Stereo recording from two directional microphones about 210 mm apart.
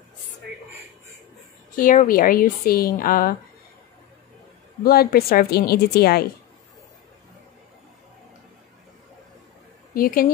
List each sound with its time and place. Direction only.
1.8 s a woman's voice: 40° left (ahead or behind)
4.8 s a woman's voice: 45° left (ahead or behind)
9.9 s a woman's voice: 45° left (ahead or behind)